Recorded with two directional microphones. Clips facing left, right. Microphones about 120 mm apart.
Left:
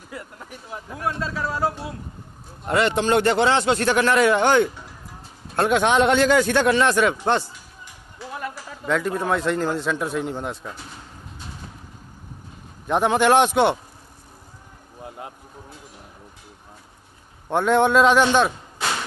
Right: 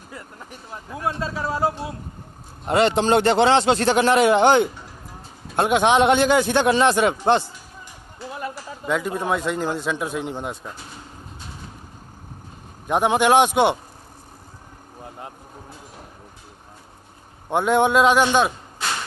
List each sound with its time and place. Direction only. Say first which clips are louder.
0.1 s vehicle: left 2 dB; 5° left (ahead or behind)
1.3 s speech: right 1 dB; 25° right (ahead or behind)
1.6 s a man's voice: right 2 dB; centre (ahead or behind)
2.6 s speech: right 2 dB; 25° right (ahead or behind)
8.8 s a man's voice: left 1 dB; 10° right (ahead or behind)
12.8 s a man's voice: even; 10° right (ahead or behind)
17.5 s a man's voice: even; 10° right (ahead or behind)